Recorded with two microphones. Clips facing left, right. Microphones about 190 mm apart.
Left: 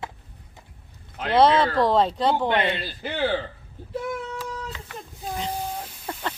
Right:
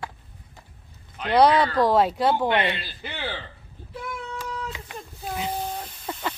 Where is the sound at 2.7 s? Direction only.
40° left (ahead or behind).